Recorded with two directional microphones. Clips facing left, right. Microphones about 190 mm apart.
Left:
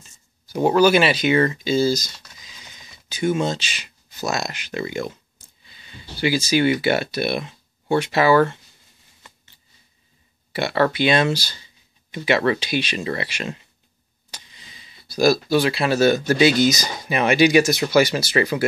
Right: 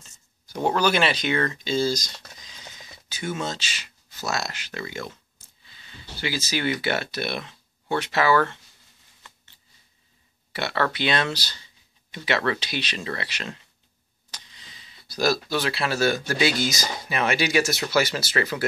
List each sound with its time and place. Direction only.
0.5 s speech: 10° left (ahead or behind)
10.5 s speech: 15° left (ahead or behind)
14.3 s a sound: 10° left (ahead or behind)
15.5 s speech: 15° left (ahead or behind)